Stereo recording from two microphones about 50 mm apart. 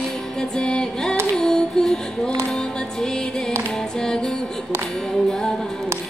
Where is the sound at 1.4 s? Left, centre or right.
Centre.